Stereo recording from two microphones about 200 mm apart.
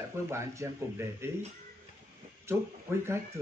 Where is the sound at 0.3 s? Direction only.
15° right (ahead or behind).